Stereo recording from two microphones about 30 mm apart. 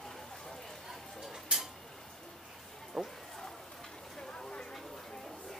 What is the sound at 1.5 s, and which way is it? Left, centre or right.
Tick-tock, right.